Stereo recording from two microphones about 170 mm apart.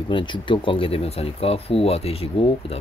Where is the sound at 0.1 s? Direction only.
30° left (ahead or behind).